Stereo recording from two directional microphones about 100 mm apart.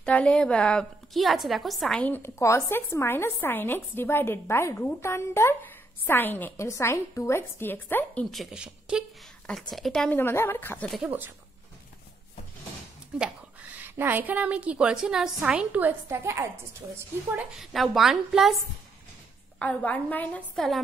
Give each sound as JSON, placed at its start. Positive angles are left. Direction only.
{"t": 0.0, "sound": "a woman's voice", "side_deg": 10}
{"t": 2.0, "sound": "a woman's voice", "side_deg": 20}
{"t": 8.4, "sound": "a woman's voice", "side_deg": -10}
{"t": 9.5, "sound": "a woman's voice", "side_deg": 0}
{"t": 10.0, "sound": "a woman's voice", "side_deg": 20}
{"t": 11.1, "sound": "speech", "side_deg": -20}
{"t": 13.2, "sound": "a woman's voice", "side_deg": -15}
{"t": 17.6, "sound": "a woman's voice", "side_deg": 0}
{"t": 19.6, "sound": "a woman's voice", "side_deg": 15}
{"t": 20.5, "sound": "a woman's voice", "side_deg": 5}